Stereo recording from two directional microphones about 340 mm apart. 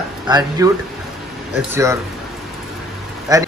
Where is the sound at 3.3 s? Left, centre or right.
Centre.